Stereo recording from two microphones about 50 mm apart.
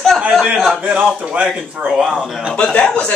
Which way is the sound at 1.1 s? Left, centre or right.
Right.